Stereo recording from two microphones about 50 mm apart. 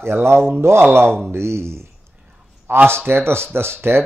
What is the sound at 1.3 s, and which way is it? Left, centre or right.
Speech, right.